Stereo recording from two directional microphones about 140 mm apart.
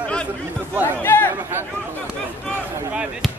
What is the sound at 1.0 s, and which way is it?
Speech, 15° left (ahead or behind).